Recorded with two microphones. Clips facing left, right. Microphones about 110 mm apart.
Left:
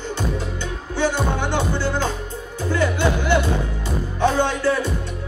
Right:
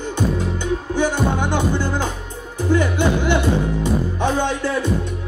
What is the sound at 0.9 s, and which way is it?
Music, 15° right (ahead or behind).